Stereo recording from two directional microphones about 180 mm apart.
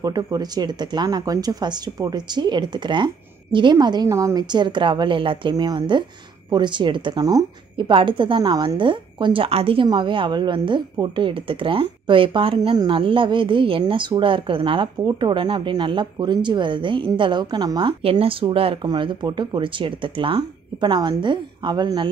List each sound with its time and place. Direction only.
0.0 s a woman's voice: 20° right (ahead or behind)